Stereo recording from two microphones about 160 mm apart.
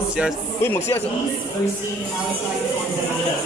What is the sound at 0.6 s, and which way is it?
Speech, 15° left (ahead or behind).